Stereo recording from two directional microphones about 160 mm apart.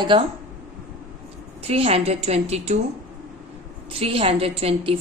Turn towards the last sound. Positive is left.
turn(degrees=-35)  # may be behind; listen again after turning